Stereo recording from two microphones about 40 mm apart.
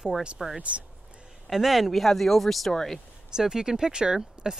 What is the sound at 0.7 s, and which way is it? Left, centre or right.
Speech, right.